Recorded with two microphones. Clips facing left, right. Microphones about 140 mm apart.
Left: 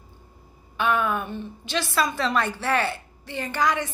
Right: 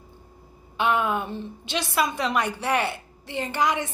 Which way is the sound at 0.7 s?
20° right (ahead or behind).